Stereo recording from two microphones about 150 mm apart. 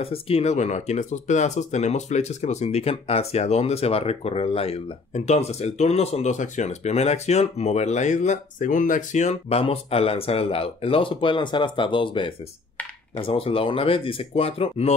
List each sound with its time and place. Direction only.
0.0 s speech: 40° left (ahead or behind)